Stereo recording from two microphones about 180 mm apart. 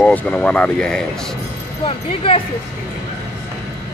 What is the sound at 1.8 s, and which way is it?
Speech, 30° left (ahead or behind).